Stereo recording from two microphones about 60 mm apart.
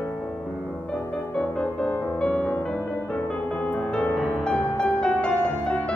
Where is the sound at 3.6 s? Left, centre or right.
Left.